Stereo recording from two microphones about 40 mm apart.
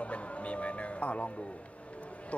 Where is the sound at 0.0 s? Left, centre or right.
Left.